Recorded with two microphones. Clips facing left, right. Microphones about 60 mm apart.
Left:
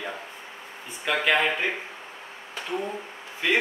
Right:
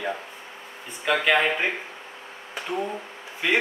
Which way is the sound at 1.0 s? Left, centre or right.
Centre.